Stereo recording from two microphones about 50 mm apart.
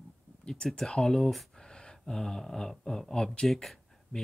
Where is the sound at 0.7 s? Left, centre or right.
Centre.